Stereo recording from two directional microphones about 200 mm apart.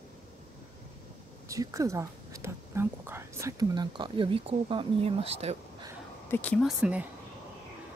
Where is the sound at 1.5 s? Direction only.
15° right (ahead or behind); by 5.5 s 30° right (ahead or behind).